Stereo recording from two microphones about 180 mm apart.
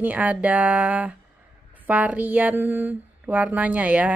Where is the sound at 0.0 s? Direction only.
10° right (ahead or behind).